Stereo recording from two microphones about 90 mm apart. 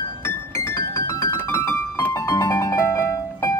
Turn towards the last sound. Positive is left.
turn(degrees=35)  # may be behind; listen again after turning